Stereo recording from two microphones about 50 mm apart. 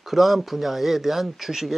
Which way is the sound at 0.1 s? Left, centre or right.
Centre.